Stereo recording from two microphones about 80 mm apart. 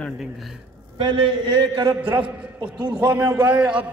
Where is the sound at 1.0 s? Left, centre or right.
Right.